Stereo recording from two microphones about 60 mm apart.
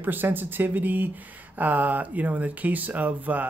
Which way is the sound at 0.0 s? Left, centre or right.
Right.